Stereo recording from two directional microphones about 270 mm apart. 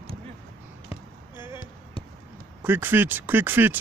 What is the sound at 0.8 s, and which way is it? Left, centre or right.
Basketball bounce, centre.